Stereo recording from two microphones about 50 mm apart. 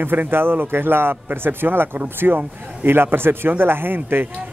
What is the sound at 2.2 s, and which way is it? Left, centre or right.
Speech, right.